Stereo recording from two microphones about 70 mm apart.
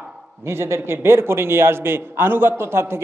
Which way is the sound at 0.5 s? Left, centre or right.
Right.